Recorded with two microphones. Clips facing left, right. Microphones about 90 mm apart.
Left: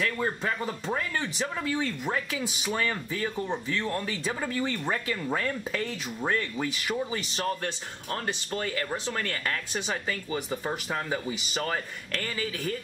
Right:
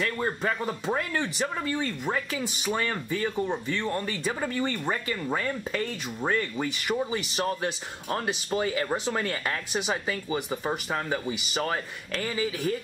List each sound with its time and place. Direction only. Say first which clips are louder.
0.0 s speech: right 1 dB; centre (ahead or behind)